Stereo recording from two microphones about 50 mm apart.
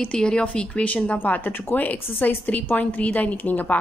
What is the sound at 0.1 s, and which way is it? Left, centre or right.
Speech, centre.